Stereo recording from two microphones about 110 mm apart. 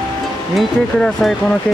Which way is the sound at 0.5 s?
Centre (ahead or behind).